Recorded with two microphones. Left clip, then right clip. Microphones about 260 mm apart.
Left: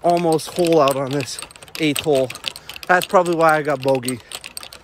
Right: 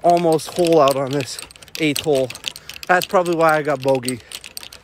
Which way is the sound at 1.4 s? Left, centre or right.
Centre.